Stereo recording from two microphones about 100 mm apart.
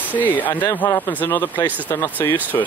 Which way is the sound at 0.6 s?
30° left (ahead or behind).